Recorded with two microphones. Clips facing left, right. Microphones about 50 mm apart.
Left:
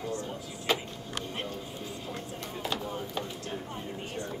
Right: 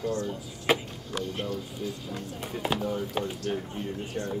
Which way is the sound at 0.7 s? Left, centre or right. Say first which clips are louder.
Right 4 dB; centre.